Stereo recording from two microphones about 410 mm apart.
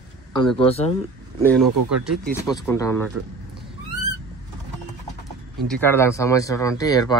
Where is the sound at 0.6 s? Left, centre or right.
Centre.